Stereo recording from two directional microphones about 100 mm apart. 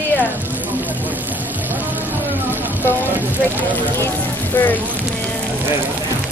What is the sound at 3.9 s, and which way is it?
Speech, 20° left (ahead or behind).